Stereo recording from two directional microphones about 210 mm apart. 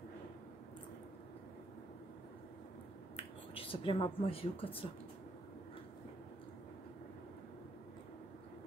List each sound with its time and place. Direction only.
3.2 s speech: 25° left (ahead or behind)